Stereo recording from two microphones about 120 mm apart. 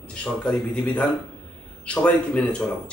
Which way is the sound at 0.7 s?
15° left (ahead or behind).